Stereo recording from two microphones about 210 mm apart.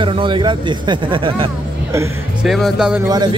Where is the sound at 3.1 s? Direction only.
20° right (ahead or behind).